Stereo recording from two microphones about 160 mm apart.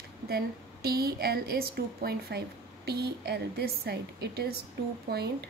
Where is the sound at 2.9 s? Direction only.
90° right.